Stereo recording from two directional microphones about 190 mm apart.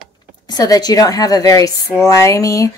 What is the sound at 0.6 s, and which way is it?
Speech, 20° left (ahead or behind).